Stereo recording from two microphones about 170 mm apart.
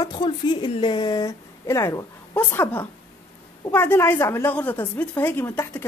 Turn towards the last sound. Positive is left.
turn(degrees=10)  # may be behind; listen again after turning